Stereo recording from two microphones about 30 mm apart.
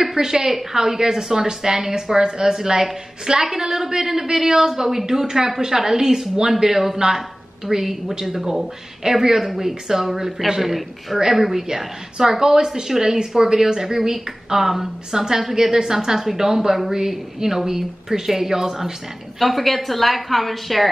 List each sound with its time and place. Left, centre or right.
0.0 s a woman's voice: centre
8.1 s a woman's voice: centre
19.4 s a woman's voice: centre